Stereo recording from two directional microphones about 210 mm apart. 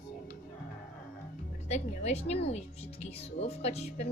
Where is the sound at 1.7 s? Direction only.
30° left (ahead or behind).